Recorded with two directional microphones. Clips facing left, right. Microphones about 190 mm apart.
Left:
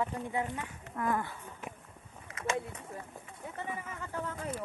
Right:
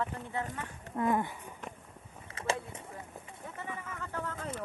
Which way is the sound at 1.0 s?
20° right (ahead or behind).